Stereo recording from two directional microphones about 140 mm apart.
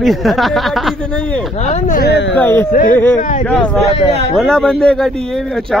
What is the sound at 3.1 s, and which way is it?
Speech, 65° left (ahead or behind).